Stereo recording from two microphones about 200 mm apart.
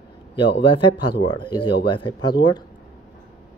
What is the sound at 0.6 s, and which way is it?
A man's voice, 25° left (ahead or behind).